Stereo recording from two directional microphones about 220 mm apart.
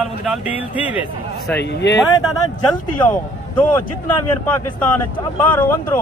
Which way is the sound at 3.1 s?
10° left (ahead or behind).